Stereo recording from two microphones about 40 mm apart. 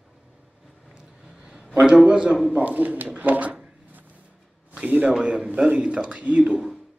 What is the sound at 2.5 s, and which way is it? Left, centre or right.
Speech, right.